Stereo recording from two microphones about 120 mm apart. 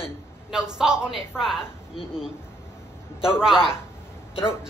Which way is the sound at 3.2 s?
5° right (ahead or behind).